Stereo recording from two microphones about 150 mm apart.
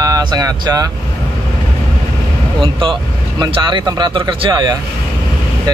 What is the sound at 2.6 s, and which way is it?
Speech, 35° right (ahead or behind).